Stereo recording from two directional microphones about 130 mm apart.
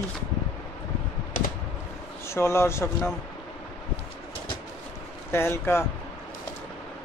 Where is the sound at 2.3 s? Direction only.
20° left (ahead or behind).